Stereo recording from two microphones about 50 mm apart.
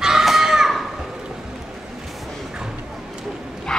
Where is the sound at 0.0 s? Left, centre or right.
Centre.